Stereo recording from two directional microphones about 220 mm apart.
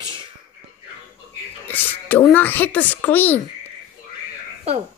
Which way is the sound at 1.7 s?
10° left (ahead or behind).